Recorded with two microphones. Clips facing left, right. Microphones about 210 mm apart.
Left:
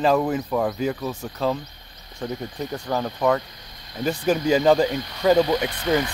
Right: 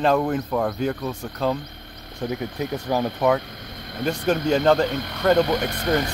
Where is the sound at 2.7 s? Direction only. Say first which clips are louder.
Right 2 dB; 5° right (ahead or behind).